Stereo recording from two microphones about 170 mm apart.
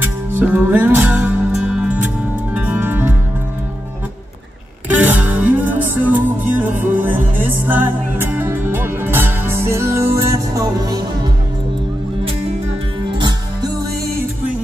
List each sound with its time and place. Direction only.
0.0 s music: 10° right (ahead or behind)
4.9 s music: 10° right (ahead or behind)
13.2 s music: 25° right (ahead or behind)